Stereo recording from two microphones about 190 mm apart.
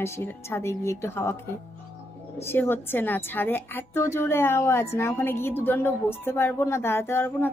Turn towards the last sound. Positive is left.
turn(degrees=10)  # may be behind; listen again after turning